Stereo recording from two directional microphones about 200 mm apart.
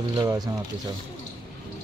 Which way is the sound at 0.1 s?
20° right (ahead or behind).